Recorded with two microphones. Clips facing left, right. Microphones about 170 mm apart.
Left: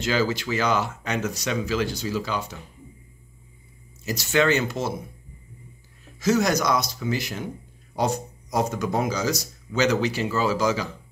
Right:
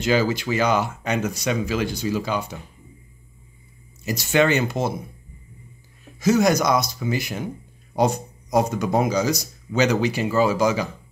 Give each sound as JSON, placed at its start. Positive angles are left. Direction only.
{"t": 0.0, "sound": "speech", "side_deg": -15}
{"t": 4.0, "sound": "speech", "side_deg": -15}
{"t": 4.6, "sound": "speech", "side_deg": -55}
{"t": 6.1, "sound": "speech", "side_deg": -15}